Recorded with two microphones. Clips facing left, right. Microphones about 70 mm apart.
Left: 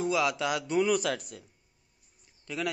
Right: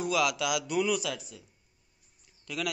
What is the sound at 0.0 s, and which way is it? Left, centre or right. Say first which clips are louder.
A man's voice: left 1 dB; left.